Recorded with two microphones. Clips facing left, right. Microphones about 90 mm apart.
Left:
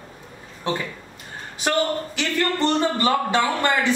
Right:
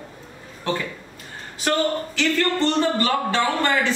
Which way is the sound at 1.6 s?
15° left (ahead or behind).